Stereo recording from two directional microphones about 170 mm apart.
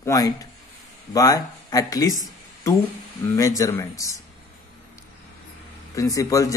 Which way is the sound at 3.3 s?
20° left (ahead or behind).